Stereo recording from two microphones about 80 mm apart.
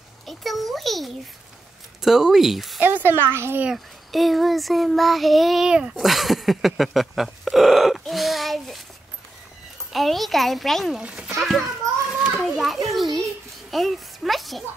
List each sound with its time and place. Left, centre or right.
0.3 s a sound: centre
2.0 s speech: centre
2.8 s a child's voice: right
3.6 s child singing: centre
9.9 s child singing: centre
11.0 s a child's voice: centre
11.3 s child singing: centre
13.7 s a child's voice: centre